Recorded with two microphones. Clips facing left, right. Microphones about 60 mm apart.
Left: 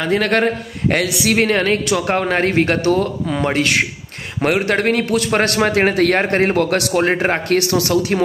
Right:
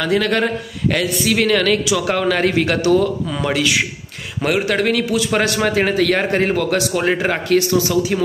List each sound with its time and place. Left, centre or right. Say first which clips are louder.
0.0 s a man's voice: left 1 dB; left
1.0 s speech: even; left
1.3 s a man's voice: even; left
7.4 s a man's voice: right 1 dB; left